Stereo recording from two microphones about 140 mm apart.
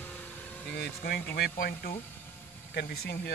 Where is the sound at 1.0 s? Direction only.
90° left.